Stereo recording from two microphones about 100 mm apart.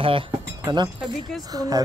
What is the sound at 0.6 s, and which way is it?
Speech, 45° right (ahead or behind).